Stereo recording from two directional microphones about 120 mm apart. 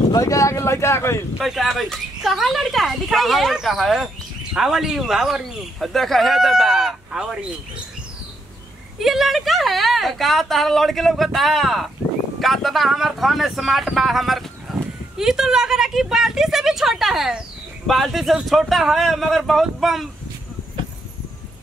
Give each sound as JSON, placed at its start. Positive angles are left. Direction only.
{"t": 0.1, "sound": "speech", "side_deg": 25}
{"t": 1.4, "sound": "speech", "side_deg": 0}
{"t": 9.0, "sound": "speech", "side_deg": 0}